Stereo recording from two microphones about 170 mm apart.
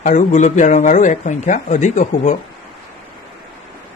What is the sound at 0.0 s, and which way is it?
A man's voice, 45° left (ahead or behind).